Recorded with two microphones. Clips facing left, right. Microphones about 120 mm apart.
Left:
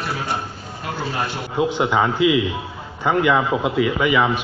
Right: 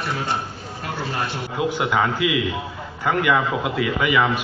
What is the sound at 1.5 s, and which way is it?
A man's voice, 25° left (ahead or behind).